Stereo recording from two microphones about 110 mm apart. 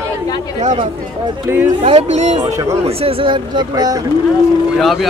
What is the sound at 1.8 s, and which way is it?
Speech, 80° right.